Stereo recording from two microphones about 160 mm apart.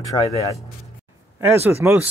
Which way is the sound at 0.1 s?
20° left (ahead or behind).